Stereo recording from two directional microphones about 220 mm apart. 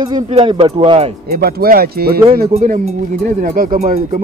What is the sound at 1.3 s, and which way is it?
Speech, 45° right (ahead or behind).